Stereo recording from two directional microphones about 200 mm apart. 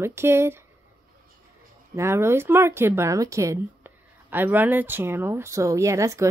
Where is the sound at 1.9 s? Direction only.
10° right (ahead or behind).